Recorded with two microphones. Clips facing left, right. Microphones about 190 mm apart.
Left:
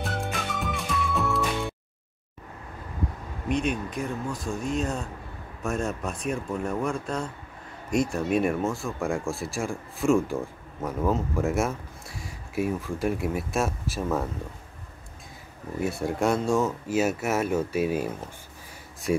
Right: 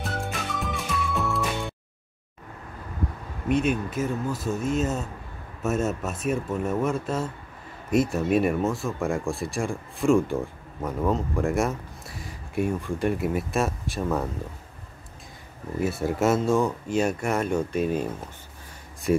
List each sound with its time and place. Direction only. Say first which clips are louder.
0.0 s music: even; centre (ahead or behind)
3.4 s speech: right 3 dB; 5° right (ahead or behind)
15.8 s speech: right 2 dB; centre (ahead or behind)